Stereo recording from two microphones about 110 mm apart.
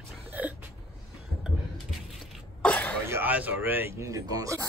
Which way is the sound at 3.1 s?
15° right (ahead or behind).